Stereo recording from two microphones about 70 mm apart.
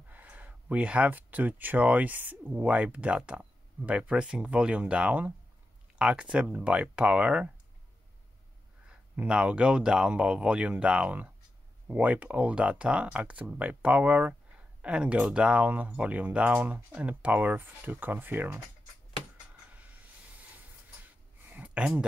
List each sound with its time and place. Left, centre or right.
0.1 s speech: right
9.1 s speech: centre
21.0 s a sound: right